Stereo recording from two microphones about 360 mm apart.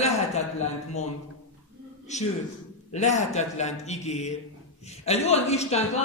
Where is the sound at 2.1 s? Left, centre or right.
Centre.